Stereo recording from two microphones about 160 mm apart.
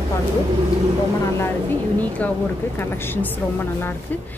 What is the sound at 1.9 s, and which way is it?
A woman's voice, 10° left (ahead or behind).